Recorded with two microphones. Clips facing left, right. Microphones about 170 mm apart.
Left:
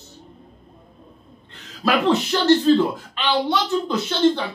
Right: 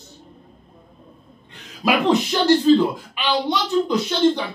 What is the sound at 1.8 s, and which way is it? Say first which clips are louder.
Speech: even; 15° right (ahead or behind).